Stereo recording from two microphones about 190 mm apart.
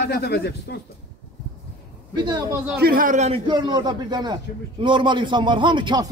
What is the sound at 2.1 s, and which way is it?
Speech, 20° right (ahead or behind).